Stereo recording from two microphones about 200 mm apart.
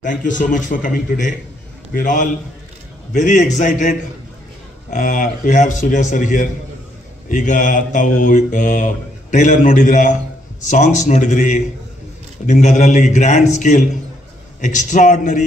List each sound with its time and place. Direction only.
0.0 s mantra: 40° left (ahead or behind)
4.9 s mantra: 40° left (ahead or behind)